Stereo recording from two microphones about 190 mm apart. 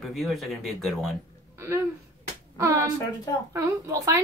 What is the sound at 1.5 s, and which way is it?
Speech, 15° right (ahead or behind).